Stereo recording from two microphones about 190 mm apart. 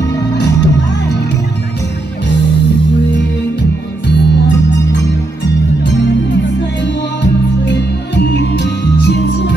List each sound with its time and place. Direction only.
0.4 s music: 65° left (ahead or behind)
6.3 s music: 65° left (ahead or behind)